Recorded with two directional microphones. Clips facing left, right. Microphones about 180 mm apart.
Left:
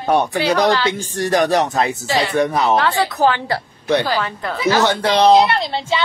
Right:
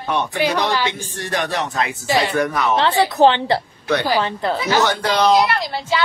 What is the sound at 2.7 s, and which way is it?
Speech, 20° right (ahead or behind).